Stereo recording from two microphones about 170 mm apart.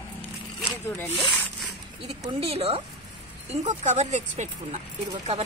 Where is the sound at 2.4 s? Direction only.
35° right (ahead or behind).